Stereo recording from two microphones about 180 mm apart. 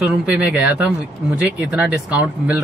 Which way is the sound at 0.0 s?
5° right (ahead or behind).